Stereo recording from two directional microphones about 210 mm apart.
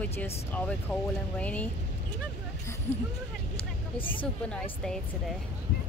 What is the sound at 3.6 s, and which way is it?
Vehicle, 25° left (ahead or behind).